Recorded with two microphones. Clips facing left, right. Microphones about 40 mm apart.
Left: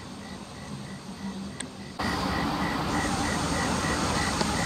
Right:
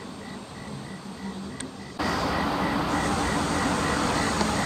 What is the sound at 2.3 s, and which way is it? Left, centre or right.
Vehicle, centre.